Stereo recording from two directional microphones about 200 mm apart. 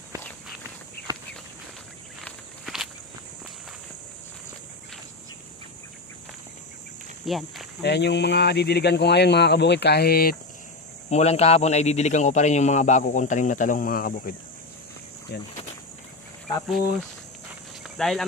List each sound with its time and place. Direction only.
2.2 s walk: centre (ahead or behind)
7.2 s speech: centre (ahead or behind)
7.8 s speech: 60° left (ahead or behind)
11.1 s speech: 35° left (ahead or behind); by 15.5 s 55° left (ahead or behind)
17.8 s a sound: centre (ahead or behind)